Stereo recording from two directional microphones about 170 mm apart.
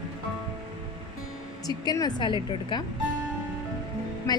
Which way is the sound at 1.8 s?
25° left (ahead or behind).